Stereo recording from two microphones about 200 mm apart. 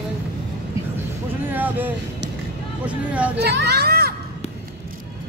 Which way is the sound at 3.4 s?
55° right (ahead or behind).